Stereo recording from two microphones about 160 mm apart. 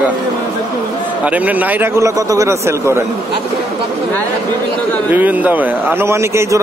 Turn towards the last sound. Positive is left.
turn(degrees=-15)  # may be behind; listen again after turning